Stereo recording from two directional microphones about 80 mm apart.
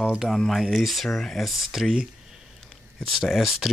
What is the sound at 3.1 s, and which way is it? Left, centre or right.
Speech, centre.